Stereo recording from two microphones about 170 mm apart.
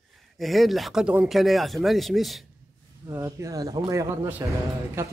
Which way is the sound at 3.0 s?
20° right (ahead or behind).